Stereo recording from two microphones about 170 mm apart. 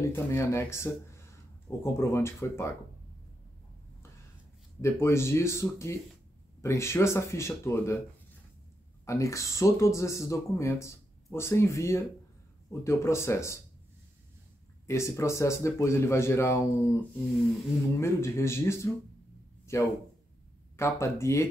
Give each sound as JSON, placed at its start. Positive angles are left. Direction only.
{"t": 0.1, "sound": "speech", "side_deg": 15}
{"t": 4.8, "sound": "speech", "side_deg": 15}
{"t": 9.0, "sound": "speech", "side_deg": 20}
{"t": 14.9, "sound": "speech", "side_deg": 15}
{"t": 18.0, "sound": "speech", "side_deg": 15}